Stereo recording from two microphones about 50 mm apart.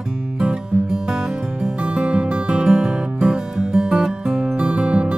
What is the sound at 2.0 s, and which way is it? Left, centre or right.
Music, right.